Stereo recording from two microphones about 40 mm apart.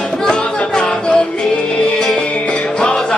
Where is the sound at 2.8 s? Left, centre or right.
Centre.